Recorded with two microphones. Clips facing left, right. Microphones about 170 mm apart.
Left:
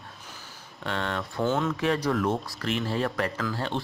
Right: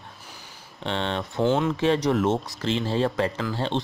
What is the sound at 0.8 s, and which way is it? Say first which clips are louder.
Speech: right 3 dB; 25° right (ahead or behind).